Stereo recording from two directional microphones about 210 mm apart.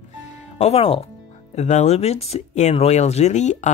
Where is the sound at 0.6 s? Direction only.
30° left (ahead or behind).